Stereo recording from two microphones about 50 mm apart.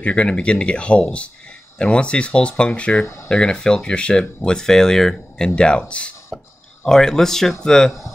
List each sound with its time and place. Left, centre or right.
0.0 s speech: left
5.6 s speech: centre
6.8 s speech: centre